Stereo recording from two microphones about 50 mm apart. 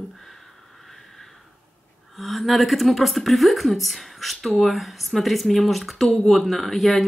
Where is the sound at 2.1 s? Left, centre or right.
Centre.